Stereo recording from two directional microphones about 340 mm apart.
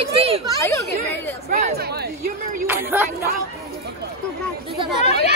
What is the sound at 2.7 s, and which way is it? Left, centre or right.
Speech, centre.